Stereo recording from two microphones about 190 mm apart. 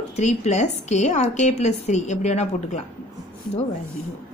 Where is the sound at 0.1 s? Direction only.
35° left (ahead or behind).